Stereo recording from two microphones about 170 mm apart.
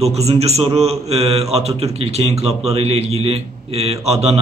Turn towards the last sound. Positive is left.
turn(degrees=-35)  # may be behind; listen again after turning